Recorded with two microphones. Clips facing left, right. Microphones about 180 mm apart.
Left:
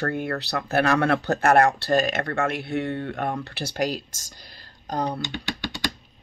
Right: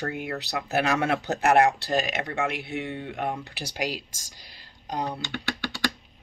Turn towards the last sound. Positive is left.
turn(degrees=20)  # may be behind; listen again after turning